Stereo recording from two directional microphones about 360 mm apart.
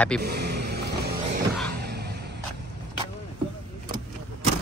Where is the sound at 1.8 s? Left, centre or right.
Right.